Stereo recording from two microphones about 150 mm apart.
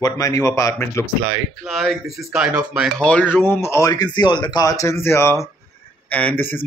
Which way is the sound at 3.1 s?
10° left (ahead or behind).